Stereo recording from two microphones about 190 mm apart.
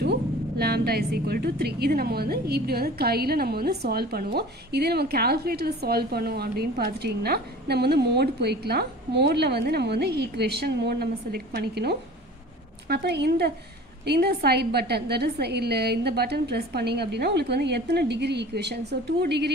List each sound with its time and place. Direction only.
0.0 s a woman's voice: 55° right (ahead or behind)